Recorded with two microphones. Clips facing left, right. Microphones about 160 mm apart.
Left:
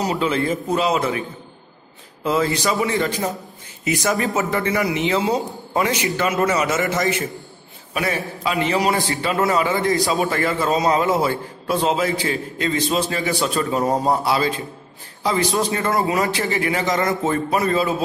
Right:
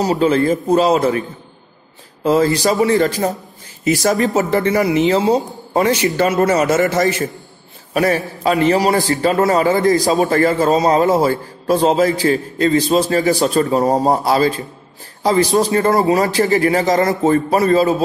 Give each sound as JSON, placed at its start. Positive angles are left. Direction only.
{"t": 0.0, "sound": "a man's voice", "side_deg": -40}
{"t": 2.2, "sound": "a man's voice", "side_deg": -40}